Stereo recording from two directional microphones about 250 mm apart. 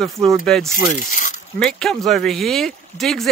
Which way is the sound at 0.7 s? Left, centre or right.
Left.